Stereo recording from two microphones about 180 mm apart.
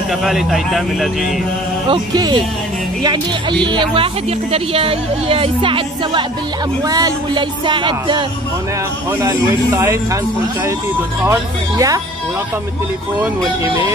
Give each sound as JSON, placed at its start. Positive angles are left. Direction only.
{"t": 0.2, "sound": "speech", "side_deg": 0}
{"t": 1.9, "sound": "speech", "side_deg": -25}
{"t": 3.6, "sound": "speech", "side_deg": -25}
{"t": 9.2, "sound": "a man's voice", "side_deg": -15}
{"t": 11.2, "sound": "speech", "side_deg": -20}